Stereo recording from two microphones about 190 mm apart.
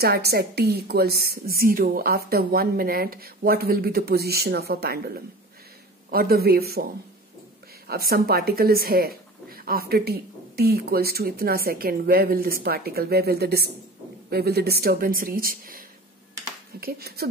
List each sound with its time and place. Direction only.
0.0 s a woman's voice: 55° right (ahead or behind)
7.9 s a woman's voice: 55° right (ahead or behind)
16.8 s a woman's voice: 55° right (ahead or behind)